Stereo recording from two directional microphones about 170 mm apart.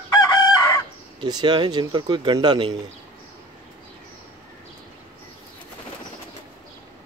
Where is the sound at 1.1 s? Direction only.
25° right (ahead or behind).